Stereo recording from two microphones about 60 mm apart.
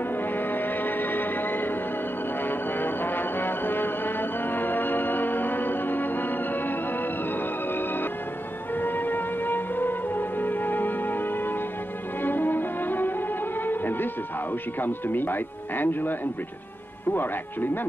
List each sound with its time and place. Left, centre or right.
0.1 s music: left
14.8 s speech: left